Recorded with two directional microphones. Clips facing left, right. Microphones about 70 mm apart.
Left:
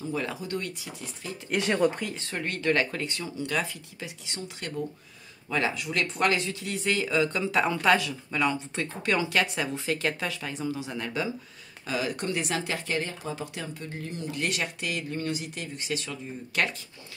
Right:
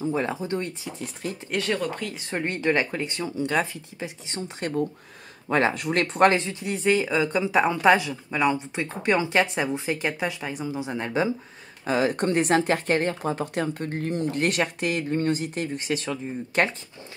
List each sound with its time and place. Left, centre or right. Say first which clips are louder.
0.0 s speech: right 6 dB; right
1.6 s speech: left 3 dB; centre
2.1 s speech: right 4 dB; right